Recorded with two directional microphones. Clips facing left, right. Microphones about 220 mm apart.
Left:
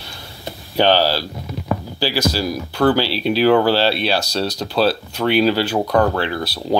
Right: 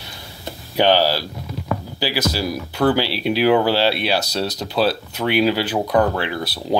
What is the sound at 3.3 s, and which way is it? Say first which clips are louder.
Speech: left 2 dB; 15° right (ahead or behind).